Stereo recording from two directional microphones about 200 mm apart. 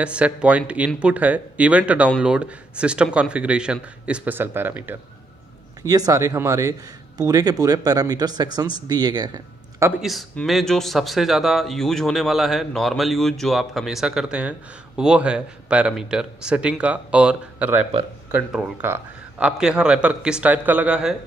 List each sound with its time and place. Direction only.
0.0 s speech: 5° right (ahead or behind)
10.0 s speech: centre (ahead or behind)